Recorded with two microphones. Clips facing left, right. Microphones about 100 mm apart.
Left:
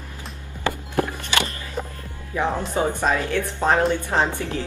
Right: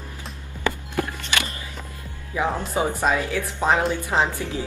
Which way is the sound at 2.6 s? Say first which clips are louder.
Left 1 dB; 5° right (ahead or behind).